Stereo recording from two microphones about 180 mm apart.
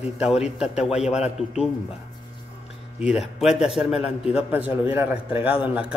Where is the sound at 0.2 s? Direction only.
5° right (ahead or behind).